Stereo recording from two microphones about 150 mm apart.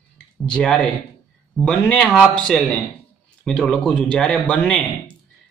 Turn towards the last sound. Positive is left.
turn(degrees=10)  # may be behind; listen again after turning